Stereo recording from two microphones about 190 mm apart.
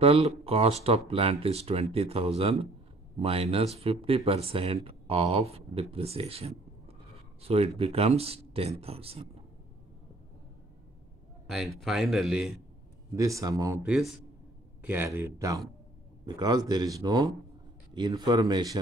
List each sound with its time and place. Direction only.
0.0 s speech: 30° right (ahead or behind)
11.4 s a man's voice: centre (ahead or behind)
13.1 s speech: 15° right (ahead or behind)
13.8 s a man's voice: 5° right (ahead or behind); by 18.8 s 20° right (ahead or behind)